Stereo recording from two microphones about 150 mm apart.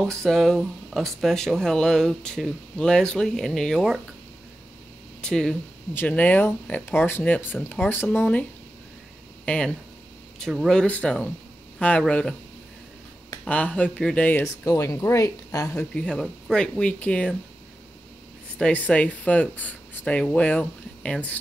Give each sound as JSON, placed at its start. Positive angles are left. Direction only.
{"t": 0.0, "sound": "speech", "side_deg": 0}
{"t": 5.2, "sound": "speech", "side_deg": 5}
{"t": 9.5, "sound": "speech", "side_deg": 5}
{"t": 13.5, "sound": "speech", "side_deg": 10}
{"t": 15.7, "sound": "speech", "side_deg": 5}
{"t": 18.6, "sound": "speech", "side_deg": 10}